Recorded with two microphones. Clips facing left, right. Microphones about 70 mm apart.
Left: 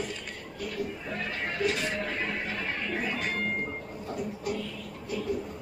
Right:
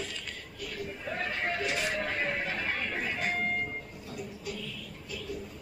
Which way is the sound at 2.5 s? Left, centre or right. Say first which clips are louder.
Left 1 dB; centre.